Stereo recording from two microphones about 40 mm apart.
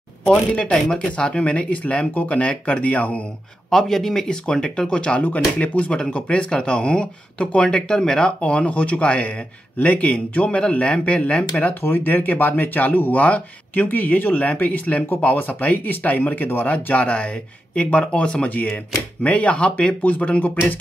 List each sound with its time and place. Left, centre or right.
0.6 s speech: left
3.7 s speech: centre; by 5.2 s left
5.2 s speech: left; by 8.3 s centre
8.4 s speech: left
11.8 s speech: left
15.2 s speech: left
18.5 s speech: left
20.0 s speech: left